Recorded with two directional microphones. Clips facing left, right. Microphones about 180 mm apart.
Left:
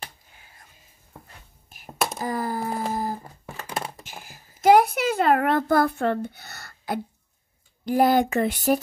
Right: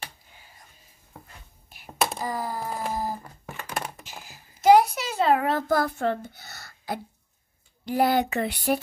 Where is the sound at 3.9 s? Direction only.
50° left (ahead or behind).